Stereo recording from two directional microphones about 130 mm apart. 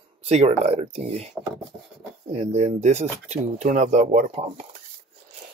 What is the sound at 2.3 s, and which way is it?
Speech, 55° right (ahead or behind).